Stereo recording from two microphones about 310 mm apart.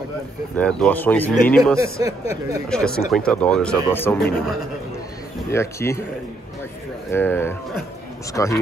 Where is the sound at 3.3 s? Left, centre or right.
Centre.